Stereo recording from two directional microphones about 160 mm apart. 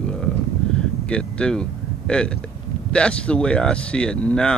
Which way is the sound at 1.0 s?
5° left (ahead or behind).